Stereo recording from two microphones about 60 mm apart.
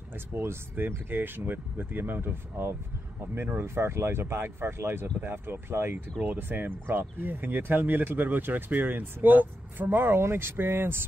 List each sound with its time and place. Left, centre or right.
0.3 s speech: right